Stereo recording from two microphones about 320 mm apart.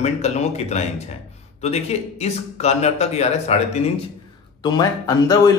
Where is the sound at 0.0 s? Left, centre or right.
Left.